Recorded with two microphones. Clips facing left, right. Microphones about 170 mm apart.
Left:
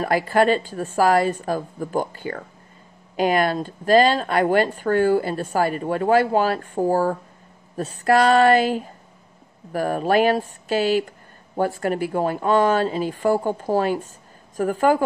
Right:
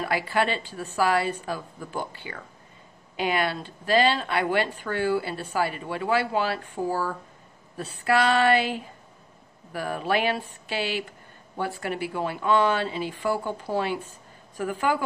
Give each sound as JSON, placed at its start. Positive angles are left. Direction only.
{"t": 0.0, "sound": "speech", "side_deg": 45}